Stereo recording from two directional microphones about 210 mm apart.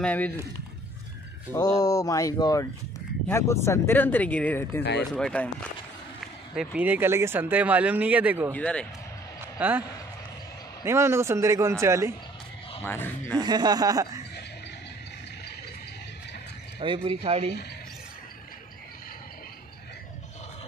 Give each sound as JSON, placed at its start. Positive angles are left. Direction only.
{"t": 0.0, "sound": "speech", "side_deg": 5}
{"t": 1.5, "sound": "speech", "side_deg": 15}
{"t": 8.5, "sound": "speech", "side_deg": 5}
{"t": 9.6, "sound": "a man's voice", "side_deg": -10}
{"t": 12.8, "sound": "speech", "side_deg": 10}
{"t": 13.4, "sound": "speech", "side_deg": -20}
{"t": 16.8, "sound": "speech", "side_deg": -25}